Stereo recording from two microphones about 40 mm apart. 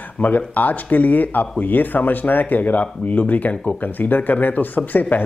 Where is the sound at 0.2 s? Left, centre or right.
Left.